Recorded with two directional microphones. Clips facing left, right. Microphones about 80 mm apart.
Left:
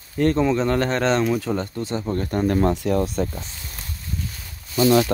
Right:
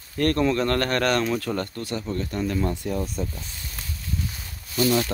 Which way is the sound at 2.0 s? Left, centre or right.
Left.